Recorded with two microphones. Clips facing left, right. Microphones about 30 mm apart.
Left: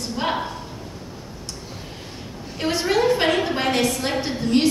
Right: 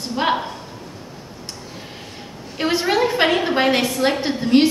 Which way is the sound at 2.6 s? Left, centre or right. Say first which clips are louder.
Right 2 dB; centre.